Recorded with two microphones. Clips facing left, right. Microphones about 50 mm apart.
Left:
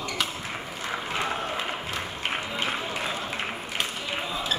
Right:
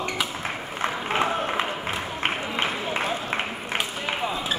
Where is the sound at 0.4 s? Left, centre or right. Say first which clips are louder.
Right 5 dB; right.